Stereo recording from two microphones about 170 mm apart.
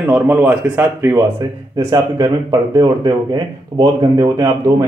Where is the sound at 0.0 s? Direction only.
10° right (ahead or behind).